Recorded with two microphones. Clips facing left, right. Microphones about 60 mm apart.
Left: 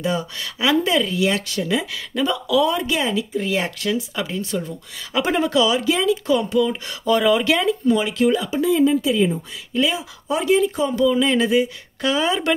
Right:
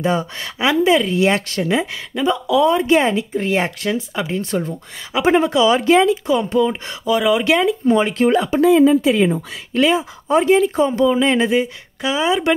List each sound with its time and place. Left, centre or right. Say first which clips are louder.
0.0 s speech: right 4 dB; right
1.2 s speech: right 4 dB; right
4.4 s speech: right 4 dB; right
5.1 s speech: right 4 dB; right
5.7 s speech: right 6 dB; right
7.1 s speech: right 1 dB; centre
7.8 s speech: right 3 dB; right
8.5 s speech: right 8 dB; right
9.8 s speech: right 6 dB; right
12.0 s speech: right 2 dB; centre